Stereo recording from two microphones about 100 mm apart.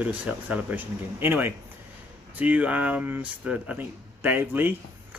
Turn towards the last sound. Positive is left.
turn(degrees=-20)  # may be behind; listen again after turning